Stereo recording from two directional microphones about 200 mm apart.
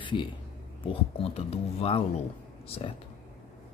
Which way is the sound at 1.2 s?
30° left (ahead or behind).